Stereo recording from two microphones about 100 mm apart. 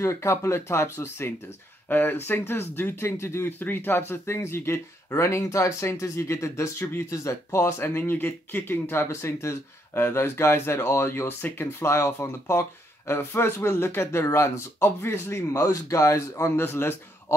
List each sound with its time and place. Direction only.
0.0 s speech: 30° left (ahead or behind)